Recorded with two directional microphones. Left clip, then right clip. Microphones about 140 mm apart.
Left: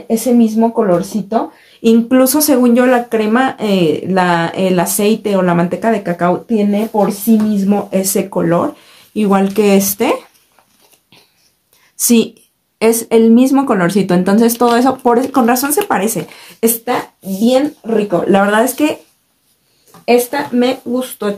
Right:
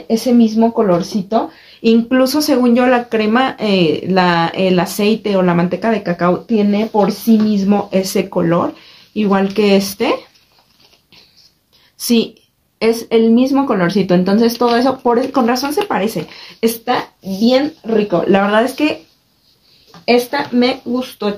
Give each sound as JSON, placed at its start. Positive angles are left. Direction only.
{"t": 0.2, "sound": "speech", "side_deg": 5}
{"t": 1.8, "sound": "speech", "side_deg": 25}
{"t": 6.5, "sound": "speech", "side_deg": 5}
{"t": 12.0, "sound": "a woman's voice", "side_deg": 35}
{"t": 18.3, "sound": "speech", "side_deg": 25}
{"t": 20.1, "sound": "speech", "side_deg": 10}